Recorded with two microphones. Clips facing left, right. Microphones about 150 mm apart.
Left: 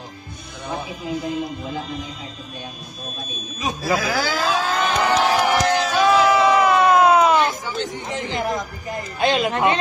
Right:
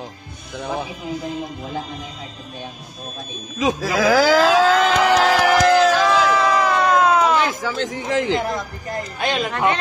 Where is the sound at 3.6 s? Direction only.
90° right.